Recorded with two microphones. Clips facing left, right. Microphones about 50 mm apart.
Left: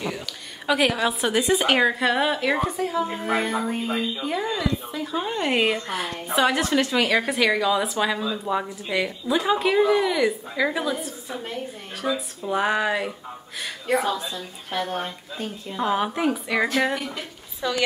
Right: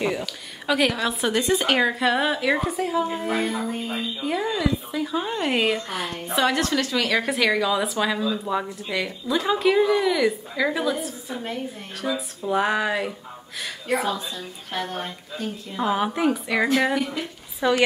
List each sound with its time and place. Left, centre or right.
0.2 s speech: centre
3.3 s speech: centre
4.2 s speech: centre
6.7 s speech: centre
7.1 s speech: centre
17.6 s a woman's voice: right